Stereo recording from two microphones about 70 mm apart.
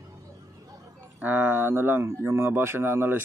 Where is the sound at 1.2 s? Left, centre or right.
Right.